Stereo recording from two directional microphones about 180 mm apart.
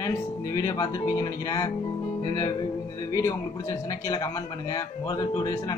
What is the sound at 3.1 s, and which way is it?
A man's voice, 15° left (ahead or behind).